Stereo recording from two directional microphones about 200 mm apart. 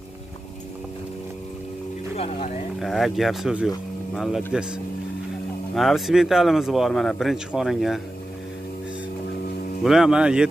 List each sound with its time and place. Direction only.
2.1 s speech: 30° left (ahead or behind)
2.8 s speech: centre (ahead or behind)
5.8 s speech: centre (ahead or behind)
9.8 s speech: centre (ahead or behind)